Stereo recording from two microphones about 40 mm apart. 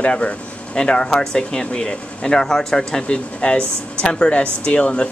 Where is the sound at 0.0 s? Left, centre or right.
Left.